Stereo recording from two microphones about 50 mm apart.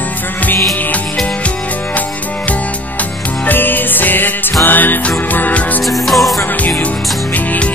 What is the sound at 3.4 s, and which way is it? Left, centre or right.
Music, left.